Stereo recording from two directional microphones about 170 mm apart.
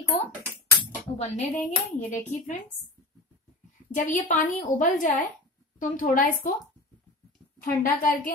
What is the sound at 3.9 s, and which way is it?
Speech, 50° left (ahead or behind).